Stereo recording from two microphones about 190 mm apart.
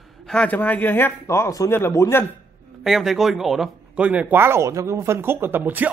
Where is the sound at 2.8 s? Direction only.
Centre (ahead or behind).